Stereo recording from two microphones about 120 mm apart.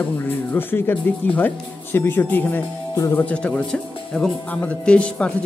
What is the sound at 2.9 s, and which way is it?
Speech, 25° left (ahead or behind).